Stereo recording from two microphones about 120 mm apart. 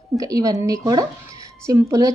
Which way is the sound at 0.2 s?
30° right (ahead or behind).